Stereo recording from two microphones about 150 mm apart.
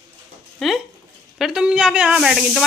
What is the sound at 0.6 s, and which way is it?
Speech, centre (ahead or behind).